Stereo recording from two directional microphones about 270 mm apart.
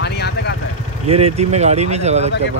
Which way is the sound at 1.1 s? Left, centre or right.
Right.